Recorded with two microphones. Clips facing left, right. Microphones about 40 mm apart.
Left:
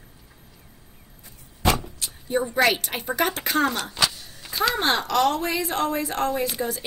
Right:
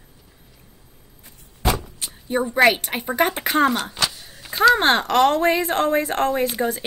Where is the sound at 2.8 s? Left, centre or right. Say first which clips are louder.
Right 4 dB; right.